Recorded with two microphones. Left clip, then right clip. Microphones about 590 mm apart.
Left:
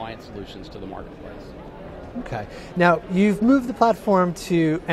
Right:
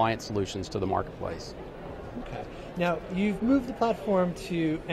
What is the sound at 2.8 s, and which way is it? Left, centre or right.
Speech, left.